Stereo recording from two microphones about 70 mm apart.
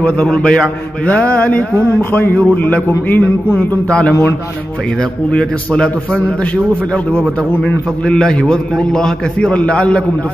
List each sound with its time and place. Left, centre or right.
0.2 s a man's voice: centre
7.2 s a man's voice: centre